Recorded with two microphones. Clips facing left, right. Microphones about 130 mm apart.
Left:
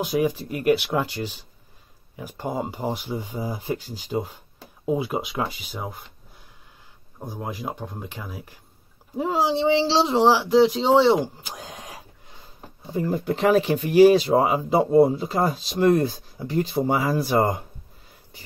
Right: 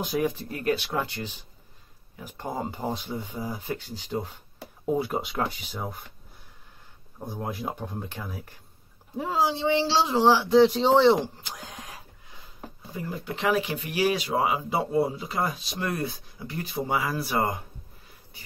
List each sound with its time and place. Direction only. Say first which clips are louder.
0.0 s speech: left 4 dB; 5° left (ahead or behind)
0.5 s speech: left 6 dB; 15° left (ahead or behind)
7.2 s speech: left 1 dB; 5° left (ahead or behind)
9.1 s speech: left 4 dB; 20° left (ahead or behind)
10.5 s speech: left 1 dB; 5° left (ahead or behind)
11.5 s a sound: left 3 dB; 15° left (ahead or behind)
13.1 s speech: left 6 dB; 40° left (ahead or behind); by 17.6 s 25° left (ahead or behind)